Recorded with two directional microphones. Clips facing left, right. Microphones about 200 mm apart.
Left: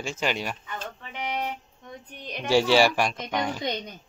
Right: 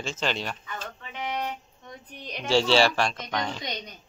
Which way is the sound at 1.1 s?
15° left (ahead or behind).